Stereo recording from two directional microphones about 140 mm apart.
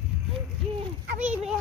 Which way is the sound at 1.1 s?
10° right (ahead or behind).